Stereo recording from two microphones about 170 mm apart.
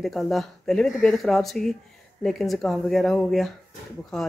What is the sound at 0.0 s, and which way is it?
Speech, centre (ahead or behind).